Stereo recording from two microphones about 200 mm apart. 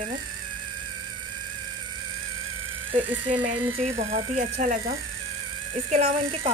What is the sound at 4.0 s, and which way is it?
Speech, 35° right (ahead or behind).